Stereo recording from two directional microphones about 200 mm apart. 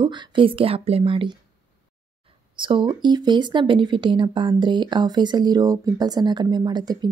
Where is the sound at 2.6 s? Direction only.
25° right (ahead or behind).